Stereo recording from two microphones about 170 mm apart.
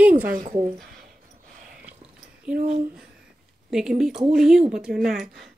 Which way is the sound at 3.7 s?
5° right (ahead or behind).